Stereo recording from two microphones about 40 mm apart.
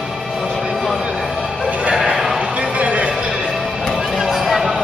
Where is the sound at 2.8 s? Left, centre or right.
Right.